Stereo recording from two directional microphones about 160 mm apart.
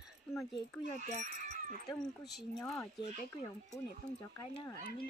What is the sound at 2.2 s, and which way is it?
Speech, centre (ahead or behind).